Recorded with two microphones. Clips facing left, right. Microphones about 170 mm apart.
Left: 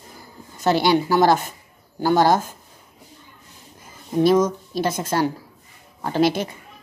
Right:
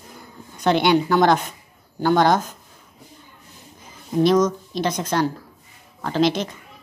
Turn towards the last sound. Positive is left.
turn(degrees=10)  # may be behind; listen again after turning